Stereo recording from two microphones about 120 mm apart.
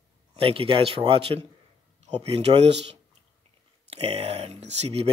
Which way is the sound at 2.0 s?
65° right (ahead or behind).